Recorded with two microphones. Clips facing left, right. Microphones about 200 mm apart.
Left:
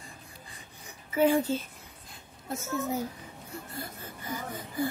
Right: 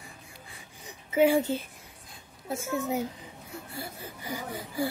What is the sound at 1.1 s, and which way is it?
Speech, 15° right (ahead or behind).